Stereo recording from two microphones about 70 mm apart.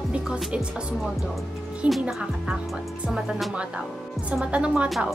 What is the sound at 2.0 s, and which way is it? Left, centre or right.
Speech, centre.